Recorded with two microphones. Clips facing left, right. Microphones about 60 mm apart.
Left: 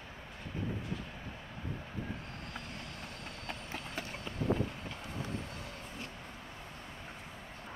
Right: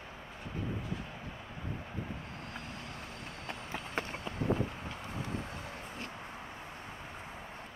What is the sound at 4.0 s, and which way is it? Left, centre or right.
Run, right.